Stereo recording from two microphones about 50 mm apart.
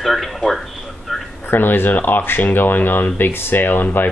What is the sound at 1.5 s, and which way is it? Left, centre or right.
Speech, left.